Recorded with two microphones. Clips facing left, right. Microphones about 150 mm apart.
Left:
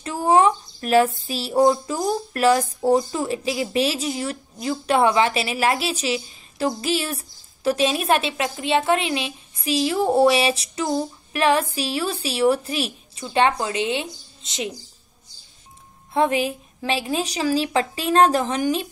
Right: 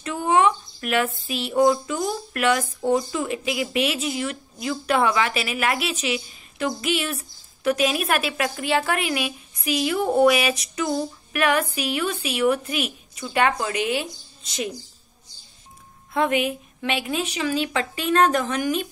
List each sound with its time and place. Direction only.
0.0 s speech: 30° left (ahead or behind)
16.1 s speech: 30° left (ahead or behind)